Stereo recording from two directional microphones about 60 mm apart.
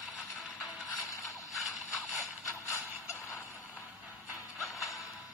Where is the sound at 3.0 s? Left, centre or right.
Left.